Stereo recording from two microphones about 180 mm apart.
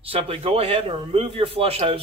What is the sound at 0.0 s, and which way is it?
A man's voice, 30° right (ahead or behind).